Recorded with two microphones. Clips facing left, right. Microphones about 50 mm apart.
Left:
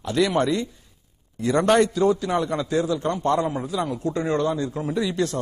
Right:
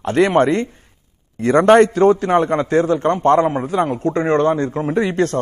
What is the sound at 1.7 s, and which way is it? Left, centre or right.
A man's voice, right.